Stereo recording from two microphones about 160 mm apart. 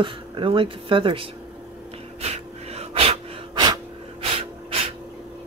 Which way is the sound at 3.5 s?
25° right (ahead or behind).